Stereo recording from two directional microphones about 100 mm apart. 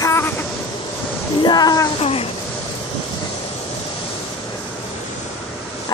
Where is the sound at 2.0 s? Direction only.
75° left (ahead or behind).